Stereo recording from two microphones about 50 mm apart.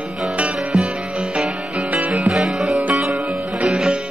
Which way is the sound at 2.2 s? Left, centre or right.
Centre.